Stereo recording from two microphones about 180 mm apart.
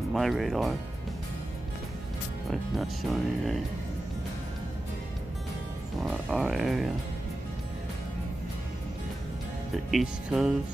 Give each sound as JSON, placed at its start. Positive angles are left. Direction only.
{"t": 0.1, "sound": "speech", "side_deg": 0}
{"t": 2.5, "sound": "speech", "side_deg": 0}
{"t": 6.0, "sound": "speech", "side_deg": 0}
{"t": 9.8, "sound": "speech", "side_deg": 0}